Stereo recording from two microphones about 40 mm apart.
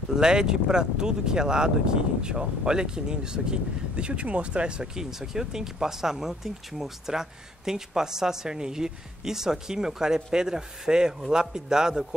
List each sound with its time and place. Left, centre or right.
0.1 s speech: centre
4.9 s speech: centre